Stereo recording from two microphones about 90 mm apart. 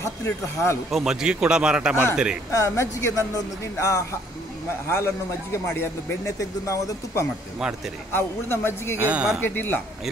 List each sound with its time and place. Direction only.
0.0 s speech: 30° left (ahead or behind)
0.9 s a man's voice: 5° right (ahead or behind)
2.5 s speech: 35° left (ahead or behind)
6.2 s speech: 35° left (ahead or behind)
7.5 s a man's voice: 5° right (ahead or behind)
8.1 s speech: 25° left (ahead or behind)
8.9 s speech: 20° right (ahead or behind)
9.4 s speech: 25° left (ahead or behind)